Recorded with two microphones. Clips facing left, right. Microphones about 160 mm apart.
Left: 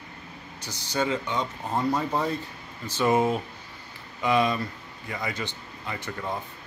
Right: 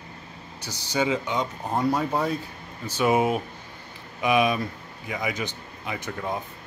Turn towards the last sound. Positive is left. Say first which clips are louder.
# right 2 dB
turn(degrees=-5)  # may be behind; listen again after turning